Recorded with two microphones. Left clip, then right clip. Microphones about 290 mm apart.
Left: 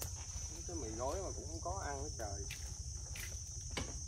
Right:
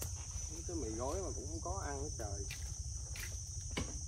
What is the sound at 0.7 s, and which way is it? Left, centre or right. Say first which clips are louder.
Cricket: right 1 dB; left.